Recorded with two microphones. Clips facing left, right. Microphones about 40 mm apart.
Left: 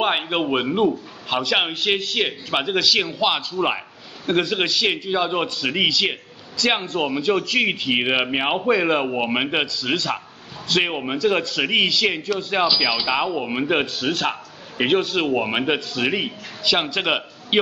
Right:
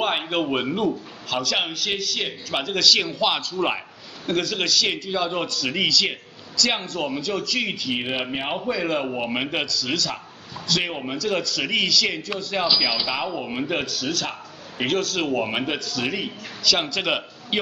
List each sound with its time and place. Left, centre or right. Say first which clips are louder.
0.0 s a man's voice: left 2 dB; centre
4.3 s a man's voice: left 3 dB; left